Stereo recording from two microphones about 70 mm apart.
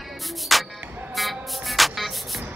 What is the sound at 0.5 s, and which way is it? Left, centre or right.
Music, centre.